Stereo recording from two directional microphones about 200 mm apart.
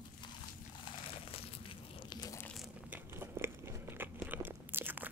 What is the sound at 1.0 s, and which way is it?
Crumpling, 30° left (ahead or behind).